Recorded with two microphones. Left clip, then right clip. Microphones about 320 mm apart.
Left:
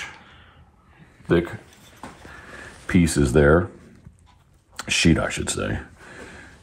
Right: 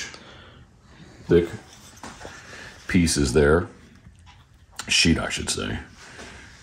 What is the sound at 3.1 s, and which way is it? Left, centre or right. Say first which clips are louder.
Speech: left 2 dB; centre.